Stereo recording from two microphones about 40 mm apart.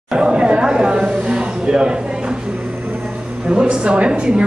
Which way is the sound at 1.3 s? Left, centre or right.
Right.